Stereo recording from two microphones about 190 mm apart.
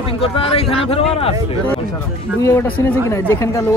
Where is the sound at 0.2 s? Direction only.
30° left (ahead or behind).